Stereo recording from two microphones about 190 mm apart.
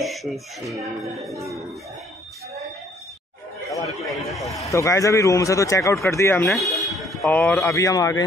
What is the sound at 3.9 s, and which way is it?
Speech, centre (ahead or behind).